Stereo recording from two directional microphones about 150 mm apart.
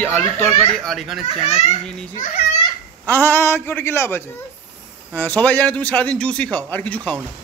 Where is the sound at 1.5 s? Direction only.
50° left (ahead or behind).